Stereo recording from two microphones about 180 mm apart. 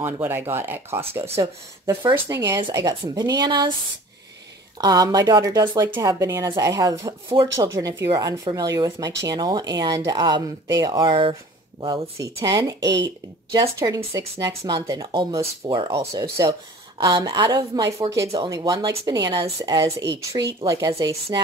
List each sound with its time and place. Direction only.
0.0 s speech: 10° right (ahead or behind)
4.7 s speech: 20° right (ahead or behind)